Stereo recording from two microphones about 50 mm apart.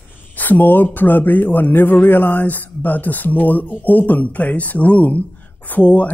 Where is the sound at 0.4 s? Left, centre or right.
Left.